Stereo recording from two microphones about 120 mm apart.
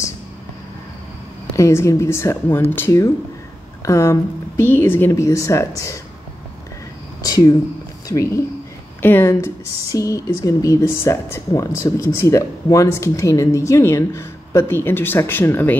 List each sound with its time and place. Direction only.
1.6 s speech: 25° left (ahead or behind)
7.2 s a sound: 30° left (ahead or behind)
8.1 s speech: 25° left (ahead or behind)